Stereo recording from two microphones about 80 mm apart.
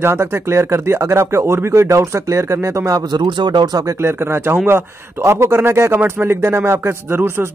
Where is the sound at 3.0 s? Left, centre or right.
Right.